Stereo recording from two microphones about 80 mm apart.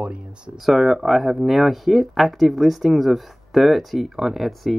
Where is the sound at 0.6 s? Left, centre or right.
Centre.